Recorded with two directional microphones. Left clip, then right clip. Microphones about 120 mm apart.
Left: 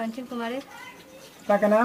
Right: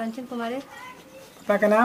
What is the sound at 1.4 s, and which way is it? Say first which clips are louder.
Speech: right 1 dB; 40° right (ahead or behind).